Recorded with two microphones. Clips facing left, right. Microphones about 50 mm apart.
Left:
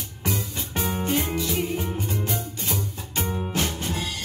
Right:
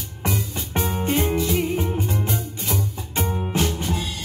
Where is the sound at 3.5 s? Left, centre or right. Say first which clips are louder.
Right 4 dB; right.